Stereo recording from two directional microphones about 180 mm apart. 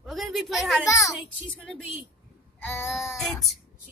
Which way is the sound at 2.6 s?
15° left (ahead or behind).